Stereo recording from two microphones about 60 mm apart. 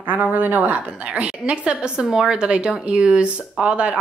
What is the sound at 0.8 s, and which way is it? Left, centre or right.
Speech, centre.